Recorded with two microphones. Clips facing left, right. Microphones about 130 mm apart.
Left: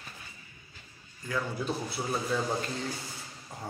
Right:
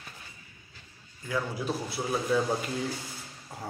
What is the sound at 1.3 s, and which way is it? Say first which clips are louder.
Speech: right 1 dB; 5° right (ahead or behind).